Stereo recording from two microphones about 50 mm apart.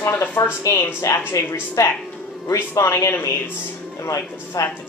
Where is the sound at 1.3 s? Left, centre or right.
Left.